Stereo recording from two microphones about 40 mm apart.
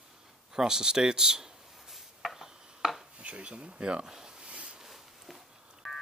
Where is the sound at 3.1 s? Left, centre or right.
Right.